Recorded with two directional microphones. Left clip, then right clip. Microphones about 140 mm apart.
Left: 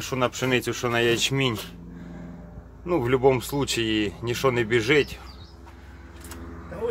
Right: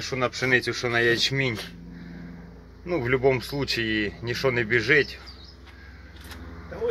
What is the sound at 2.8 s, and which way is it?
Speech, 20° left (ahead or behind).